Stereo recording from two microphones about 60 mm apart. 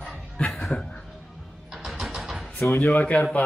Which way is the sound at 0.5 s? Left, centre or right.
Centre.